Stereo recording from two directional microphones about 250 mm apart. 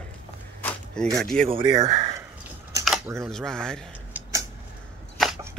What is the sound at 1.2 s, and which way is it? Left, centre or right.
Speech, centre.